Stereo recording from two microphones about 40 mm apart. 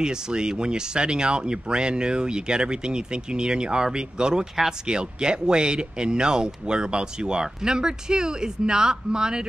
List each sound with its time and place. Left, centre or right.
0.0 s speech: centre